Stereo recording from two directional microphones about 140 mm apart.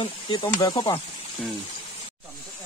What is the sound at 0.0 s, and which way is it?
Speech, 35° left (ahead or behind).